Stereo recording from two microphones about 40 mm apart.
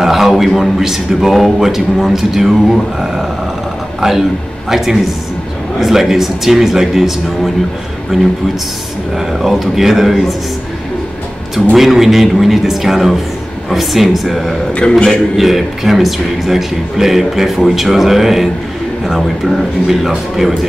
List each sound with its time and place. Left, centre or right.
0.0 s speech: centre
4.6 s a man's voice: centre
11.7 s a man's voice: centre
14.8 s a man's voice: left
15.0 s a man's voice: centre